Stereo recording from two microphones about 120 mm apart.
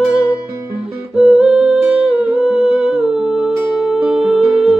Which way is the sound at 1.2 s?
5° right (ahead or behind).